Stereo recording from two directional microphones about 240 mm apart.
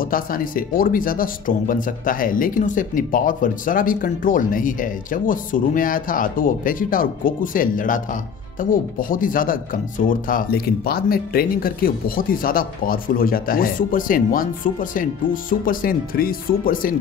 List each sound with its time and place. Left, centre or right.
0.0 s speech: left